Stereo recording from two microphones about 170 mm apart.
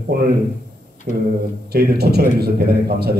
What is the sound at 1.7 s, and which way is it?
A man's voice, 70° right (ahead or behind).